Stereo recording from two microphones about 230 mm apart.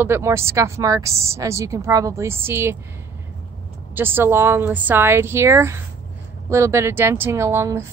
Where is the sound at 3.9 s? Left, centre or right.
Centre.